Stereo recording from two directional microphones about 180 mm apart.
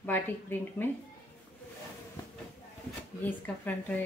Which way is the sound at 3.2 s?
10° left (ahead or behind).